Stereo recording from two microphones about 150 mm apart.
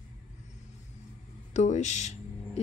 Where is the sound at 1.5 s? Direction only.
50° left (ahead or behind).